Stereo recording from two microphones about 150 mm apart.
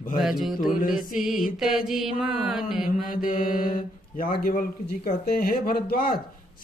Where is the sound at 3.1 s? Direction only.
65° left (ahead or behind); by 6.2 s 80° left.